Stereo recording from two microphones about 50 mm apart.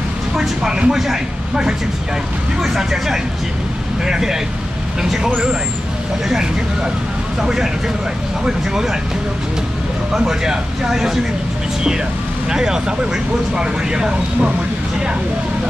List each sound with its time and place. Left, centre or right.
0.4 s speech: centre
6.2 s speech: centre
10.1 s speech: centre
12.4 s speech: centre